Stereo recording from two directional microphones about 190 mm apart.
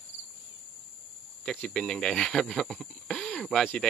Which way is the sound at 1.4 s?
5° left (ahead or behind).